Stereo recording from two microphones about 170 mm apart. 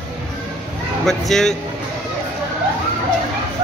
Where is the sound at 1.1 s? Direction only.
Centre (ahead or behind).